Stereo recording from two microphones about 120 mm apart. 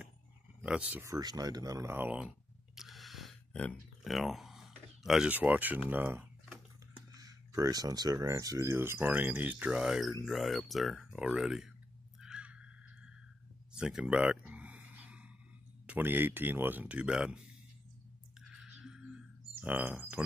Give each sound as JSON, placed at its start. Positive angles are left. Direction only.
{"t": 0.6, "sound": "speech", "side_deg": -10}
{"t": 1.0, "sound": "speech", "side_deg": -30}
{"t": 2.0, "sound": "a sound", "side_deg": -10}
{"t": 4.0, "sound": "speech", "side_deg": 0}
{"t": 7.2, "sound": "speech", "side_deg": -30}
{"t": 12.2, "sound": "a sound", "side_deg": -10}
{"t": 15.9, "sound": "speech", "side_deg": -15}
{"t": 18.5, "sound": "music", "side_deg": -5}
{"t": 19.6, "sound": "speech", "side_deg": -15}